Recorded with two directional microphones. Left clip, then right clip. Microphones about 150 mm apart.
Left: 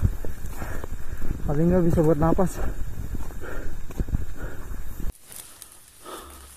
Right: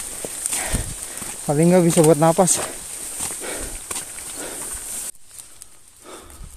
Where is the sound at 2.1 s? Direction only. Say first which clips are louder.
Right 7 dB; 30° right (ahead or behind).